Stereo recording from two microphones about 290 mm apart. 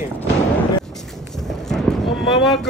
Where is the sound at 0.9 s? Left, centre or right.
Centre.